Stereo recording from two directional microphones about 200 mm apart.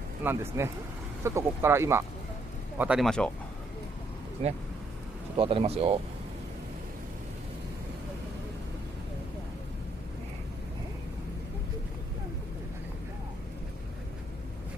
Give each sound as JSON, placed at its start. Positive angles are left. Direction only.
{"t": 0.2, "sound": "speech", "side_deg": -10}
{"t": 4.4, "sound": "speech", "side_deg": -30}